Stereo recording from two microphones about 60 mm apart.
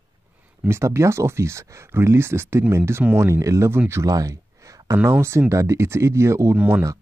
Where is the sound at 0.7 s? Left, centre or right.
Right.